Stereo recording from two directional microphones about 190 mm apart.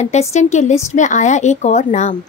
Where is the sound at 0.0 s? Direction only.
35° left (ahead or behind).